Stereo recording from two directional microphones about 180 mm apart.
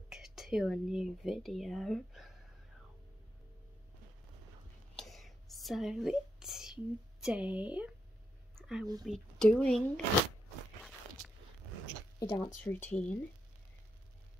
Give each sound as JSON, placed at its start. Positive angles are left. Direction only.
{"t": 0.1, "sound": "speech", "side_deg": 0}
{"t": 4.9, "sound": "whispering", "side_deg": 0}
{"t": 8.5, "sound": "a sound", "side_deg": 0}
{"t": 9.0, "sound": "speech", "side_deg": 0}
{"t": 10.8, "sound": "zipper", "side_deg": 0}
{"t": 12.2, "sound": "speech", "side_deg": 20}
{"t": 12.6, "sound": "speech", "side_deg": 10}